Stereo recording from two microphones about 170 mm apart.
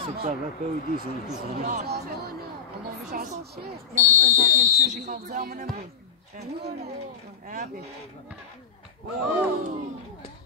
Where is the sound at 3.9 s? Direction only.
50° right (ahead or behind).